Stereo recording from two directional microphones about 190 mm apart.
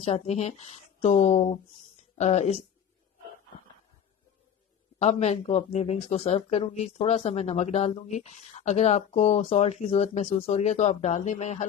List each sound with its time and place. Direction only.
0.0 s speech: 35° left (ahead or behind)
4.9 s speech: 35° left (ahead or behind)